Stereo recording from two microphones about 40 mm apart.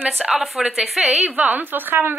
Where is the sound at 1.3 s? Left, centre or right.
Right.